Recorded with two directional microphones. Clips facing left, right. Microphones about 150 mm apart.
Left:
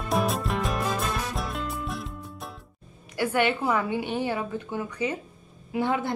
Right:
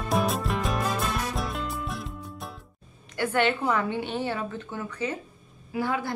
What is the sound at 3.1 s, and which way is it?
A woman's voice, 10° left (ahead or behind).